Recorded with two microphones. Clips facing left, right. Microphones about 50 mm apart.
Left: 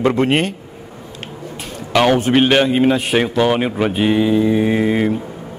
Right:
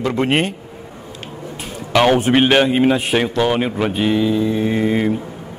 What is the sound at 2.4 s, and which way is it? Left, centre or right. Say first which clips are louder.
Speech: even; centre.